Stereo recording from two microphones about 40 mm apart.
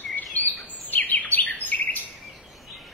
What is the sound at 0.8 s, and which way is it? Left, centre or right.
Bird vocalization, left.